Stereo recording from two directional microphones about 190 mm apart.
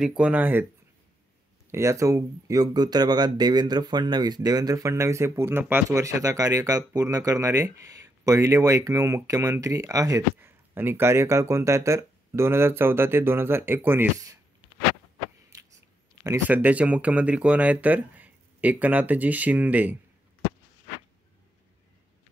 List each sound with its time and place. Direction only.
0.2 s speech: 10° right (ahead or behind)
1.7 s speech: 15° right (ahead or behind)
15.5 s a sound: 15° right (ahead or behind)
16.4 s speech: 10° right (ahead or behind)